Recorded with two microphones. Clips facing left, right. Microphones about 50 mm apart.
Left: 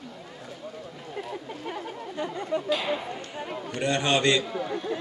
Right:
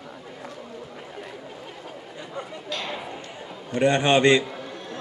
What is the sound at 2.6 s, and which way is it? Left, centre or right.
Speech, centre.